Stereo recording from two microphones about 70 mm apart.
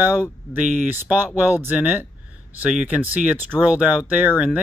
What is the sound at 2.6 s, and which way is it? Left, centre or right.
Speech, centre.